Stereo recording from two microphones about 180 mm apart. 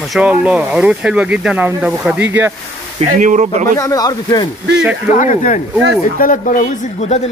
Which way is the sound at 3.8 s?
20° left (ahead or behind).